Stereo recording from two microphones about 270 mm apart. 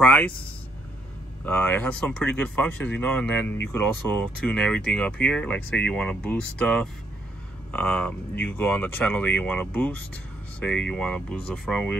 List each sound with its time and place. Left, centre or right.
0.0 s speech: centre
1.4 s speech: centre